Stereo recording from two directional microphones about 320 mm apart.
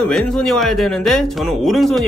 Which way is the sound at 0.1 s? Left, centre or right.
Centre.